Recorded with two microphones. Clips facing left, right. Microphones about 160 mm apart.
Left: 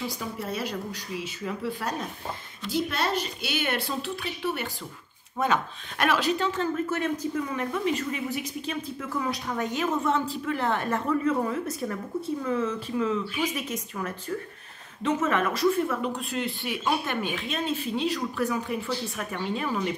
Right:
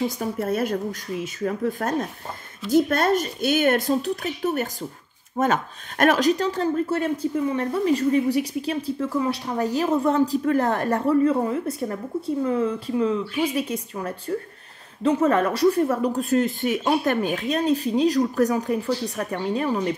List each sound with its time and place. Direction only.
0.0 s speech: 50° right (ahead or behind)